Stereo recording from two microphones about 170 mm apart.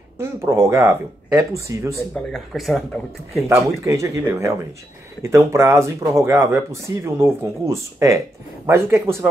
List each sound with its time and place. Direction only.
0.2 s speech: 15° right (ahead or behind)
2.1 s speech: centre (ahead or behind)
3.8 s speech: 15° right (ahead or behind)